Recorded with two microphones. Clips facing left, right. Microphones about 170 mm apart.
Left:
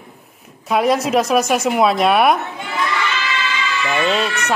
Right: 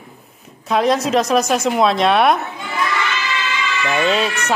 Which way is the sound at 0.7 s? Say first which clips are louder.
Even; 5° left (ahead or behind).